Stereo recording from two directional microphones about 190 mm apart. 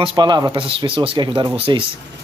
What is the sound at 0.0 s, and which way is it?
Speech, 25° right (ahead or behind).